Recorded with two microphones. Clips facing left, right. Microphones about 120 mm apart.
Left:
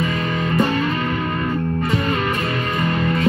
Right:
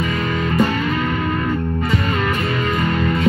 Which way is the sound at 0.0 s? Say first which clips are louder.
Right 1 dB; centre (ahead or behind).